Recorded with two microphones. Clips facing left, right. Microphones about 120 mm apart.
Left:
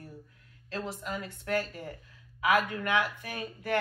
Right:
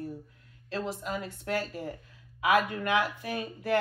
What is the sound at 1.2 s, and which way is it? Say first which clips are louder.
Speech: even; 25° right (ahead or behind).